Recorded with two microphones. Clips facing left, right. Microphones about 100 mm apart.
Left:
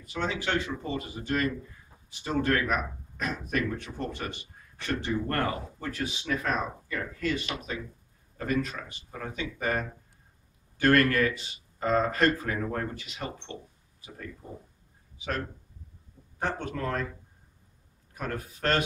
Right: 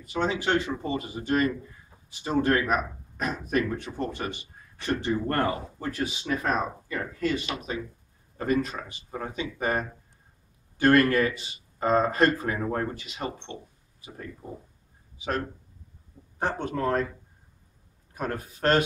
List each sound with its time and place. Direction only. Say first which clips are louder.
0.1 s speech: right 4 dB; 25° right (ahead or behind)
2.2 s speech: right 3 dB; 20° right (ahead or behind)
16.3 s speech: right 3 dB; 30° right (ahead or behind)
18.1 s speech: right 3 dB; 30° right (ahead or behind)